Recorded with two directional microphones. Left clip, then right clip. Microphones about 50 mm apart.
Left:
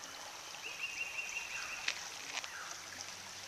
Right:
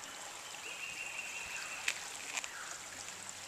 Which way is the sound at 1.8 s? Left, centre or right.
Centre.